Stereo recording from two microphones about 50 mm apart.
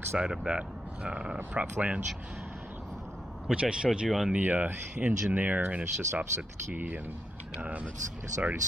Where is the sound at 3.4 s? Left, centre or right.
Centre.